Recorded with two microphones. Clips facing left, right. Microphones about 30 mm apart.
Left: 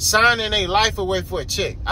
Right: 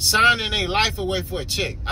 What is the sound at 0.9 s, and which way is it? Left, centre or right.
Speech, right.